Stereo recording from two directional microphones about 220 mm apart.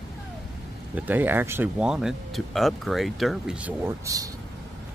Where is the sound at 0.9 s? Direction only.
10° right (ahead or behind).